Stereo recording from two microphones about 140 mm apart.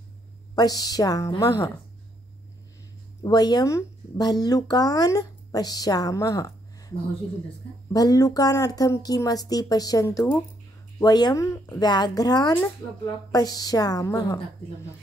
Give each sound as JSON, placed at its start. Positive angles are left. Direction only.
{"t": 0.6, "sound": "speech", "side_deg": 25}
{"t": 3.2, "sound": "speech", "side_deg": 30}
{"t": 7.9, "sound": "speech", "side_deg": 25}